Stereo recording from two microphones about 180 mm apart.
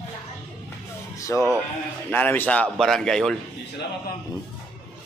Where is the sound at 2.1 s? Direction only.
10° left (ahead or behind).